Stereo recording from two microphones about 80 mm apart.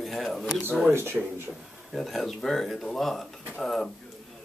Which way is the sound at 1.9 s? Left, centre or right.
Centre.